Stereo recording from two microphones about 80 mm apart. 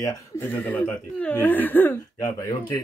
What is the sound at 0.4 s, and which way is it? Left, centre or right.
A man's voice, left.